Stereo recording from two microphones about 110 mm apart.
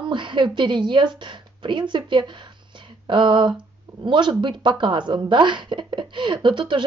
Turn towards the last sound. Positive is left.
turn(degrees=-45)  # may be behind; listen again after turning